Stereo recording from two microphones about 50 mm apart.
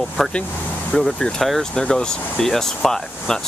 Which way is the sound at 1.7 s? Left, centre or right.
Centre.